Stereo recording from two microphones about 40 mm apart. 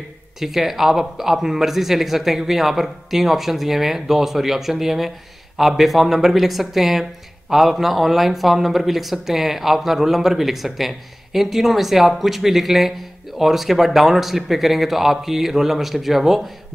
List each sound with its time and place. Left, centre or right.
0.4 s speech: centre